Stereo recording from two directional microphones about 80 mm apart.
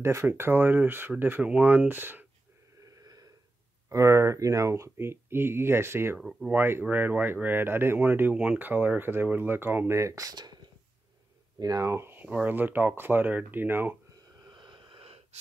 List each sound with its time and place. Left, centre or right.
0.0 s speech: right
2.8 s snort: right
3.9 s speech: right
6.1 s speech: centre
6.5 s speech: right
11.6 s speech: right
11.9 s speech: right
14.4 s vehicle: right